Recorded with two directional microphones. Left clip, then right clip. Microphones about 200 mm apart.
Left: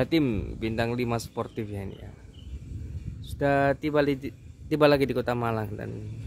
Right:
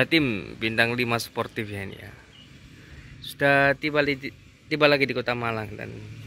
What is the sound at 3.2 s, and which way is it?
A man's voice, 10° left (ahead or behind).